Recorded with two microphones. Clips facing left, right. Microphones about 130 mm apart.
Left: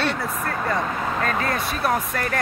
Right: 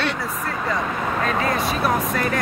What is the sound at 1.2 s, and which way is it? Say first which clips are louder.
Speech: right 2 dB; 20° right (ahead or behind).